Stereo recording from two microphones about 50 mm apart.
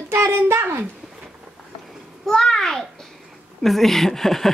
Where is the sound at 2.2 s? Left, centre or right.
Centre.